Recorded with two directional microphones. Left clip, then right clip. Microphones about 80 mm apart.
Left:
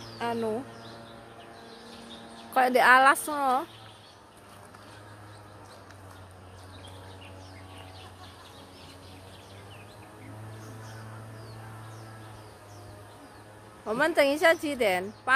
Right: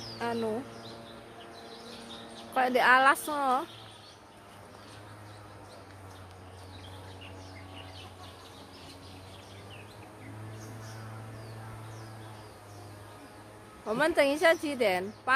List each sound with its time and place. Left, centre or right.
0.2 s speech: left
2.5 s a woman's voice: left
3.0 s a woman's voice: left
13.8 s a woman's voice: left